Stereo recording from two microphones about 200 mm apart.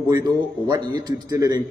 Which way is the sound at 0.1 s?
20° right (ahead or behind).